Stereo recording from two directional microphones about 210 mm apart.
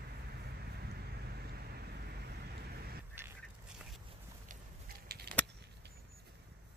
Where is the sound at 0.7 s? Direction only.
50° right (ahead or behind).